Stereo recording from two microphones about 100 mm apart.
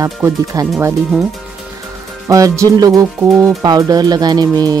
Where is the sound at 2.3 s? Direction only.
30° right (ahead or behind).